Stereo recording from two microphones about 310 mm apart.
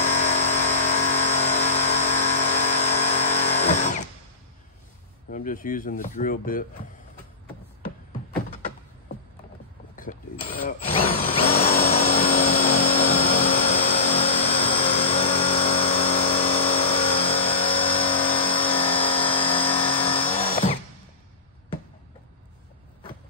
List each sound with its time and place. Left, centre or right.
0.0 s vehicle: left
5.3 s speech: left
9.9 s a sound: left
12.3 s vehicle: left
12.5 s vehicle: centre